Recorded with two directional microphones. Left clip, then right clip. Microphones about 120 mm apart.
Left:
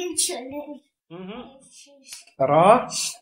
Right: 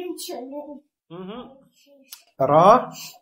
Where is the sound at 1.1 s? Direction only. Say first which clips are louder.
Right 1 dB; 20° right (ahead or behind).